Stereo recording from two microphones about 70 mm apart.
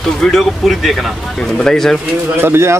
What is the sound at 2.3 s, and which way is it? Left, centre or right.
Speech, right.